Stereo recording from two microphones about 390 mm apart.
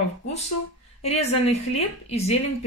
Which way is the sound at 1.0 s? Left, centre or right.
Centre.